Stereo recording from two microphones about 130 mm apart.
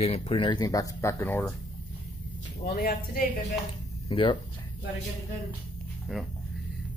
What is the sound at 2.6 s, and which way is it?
Speech, 90° left.